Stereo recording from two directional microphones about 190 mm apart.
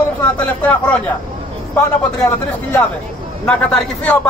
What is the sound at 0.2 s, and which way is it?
Speech, 5° left (ahead or behind).